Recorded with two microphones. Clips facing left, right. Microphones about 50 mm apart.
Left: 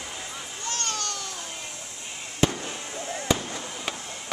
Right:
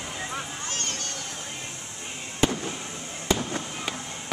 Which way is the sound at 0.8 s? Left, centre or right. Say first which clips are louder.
Left 3 dB; left.